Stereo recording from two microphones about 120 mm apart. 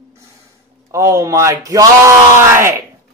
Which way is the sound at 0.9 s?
25° right (ahead or behind).